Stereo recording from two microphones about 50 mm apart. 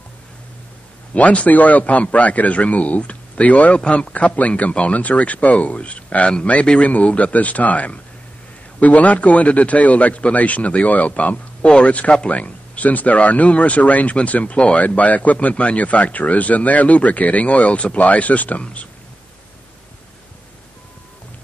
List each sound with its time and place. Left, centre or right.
1.1 s a man's voice: left